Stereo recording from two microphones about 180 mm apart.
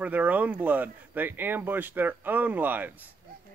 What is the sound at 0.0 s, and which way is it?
Speech, 10° right (ahead or behind).